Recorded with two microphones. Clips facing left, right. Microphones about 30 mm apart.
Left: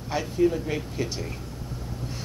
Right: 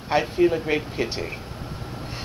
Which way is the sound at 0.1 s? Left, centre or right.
Right.